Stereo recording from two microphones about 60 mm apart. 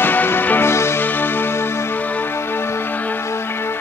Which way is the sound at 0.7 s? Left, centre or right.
Left.